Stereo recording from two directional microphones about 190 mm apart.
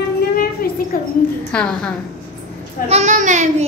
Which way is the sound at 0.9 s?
50° left (ahead or behind).